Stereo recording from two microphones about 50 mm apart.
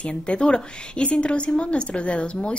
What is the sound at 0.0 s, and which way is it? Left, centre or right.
A woman's voice, left.